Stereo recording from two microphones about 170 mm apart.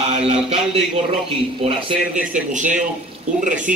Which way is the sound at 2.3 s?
45° right (ahead or behind).